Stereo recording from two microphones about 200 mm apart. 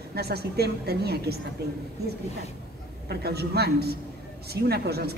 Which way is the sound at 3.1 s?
55° right (ahead or behind).